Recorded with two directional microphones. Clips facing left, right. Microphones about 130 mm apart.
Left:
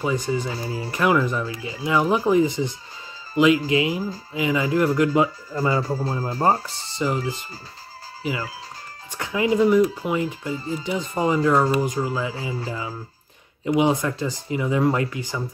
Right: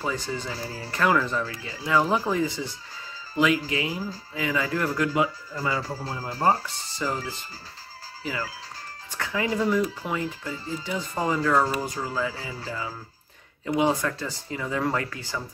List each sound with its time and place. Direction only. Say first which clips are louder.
0.0 s speech: left 6 dB; 15° left (ahead or behind); by 5.8 s 35° left (ahead or behind)
5.8 s speech: left 7 dB; 20° left (ahead or behind)